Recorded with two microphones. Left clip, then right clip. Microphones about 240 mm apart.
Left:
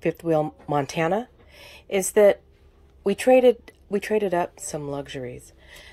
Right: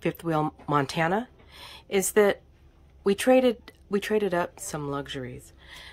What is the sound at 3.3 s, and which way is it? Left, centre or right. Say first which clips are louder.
Speech: left 9 dB; centre.